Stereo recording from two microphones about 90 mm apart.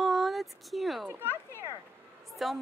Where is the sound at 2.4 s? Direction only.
Centre (ahead or behind).